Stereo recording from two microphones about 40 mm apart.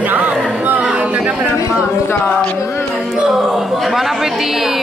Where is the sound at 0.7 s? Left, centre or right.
Right.